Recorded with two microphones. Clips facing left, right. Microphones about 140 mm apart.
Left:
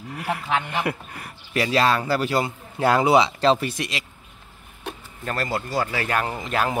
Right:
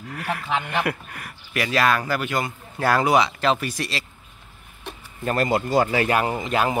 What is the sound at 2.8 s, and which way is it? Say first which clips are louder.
Speech: left 2 dB; 20° left (ahead or behind).